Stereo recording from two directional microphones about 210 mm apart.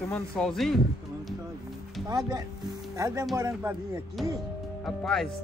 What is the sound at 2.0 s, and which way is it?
Speech, 15° right (ahead or behind).